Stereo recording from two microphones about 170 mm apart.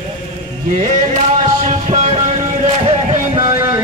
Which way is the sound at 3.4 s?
15° right (ahead or behind).